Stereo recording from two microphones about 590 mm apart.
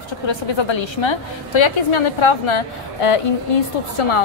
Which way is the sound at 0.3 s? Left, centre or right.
Left.